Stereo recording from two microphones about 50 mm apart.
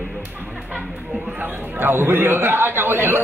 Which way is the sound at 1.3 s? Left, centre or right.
Right.